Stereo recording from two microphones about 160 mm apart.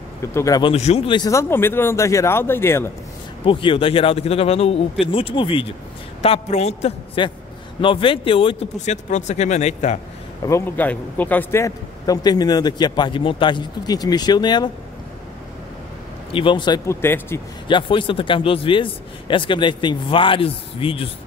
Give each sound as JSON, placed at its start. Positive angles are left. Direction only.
{"t": 0.3, "sound": "speech", "side_deg": 15}
{"t": 0.7, "sound": "speech", "side_deg": 40}
{"t": 3.4, "sound": "a man's voice", "side_deg": 35}
{"t": 7.2, "sound": "a man's voice", "side_deg": 30}
{"t": 8.7, "sound": "speech", "side_deg": 45}
{"t": 10.4, "sound": "a man's voice", "side_deg": 15}
{"t": 16.3, "sound": "a man's voice", "side_deg": 30}
{"t": 17.6, "sound": "a man's voice", "side_deg": 30}